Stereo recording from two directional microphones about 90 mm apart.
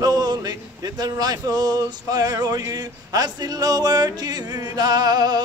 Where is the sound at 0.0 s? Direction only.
50° right (ahead or behind).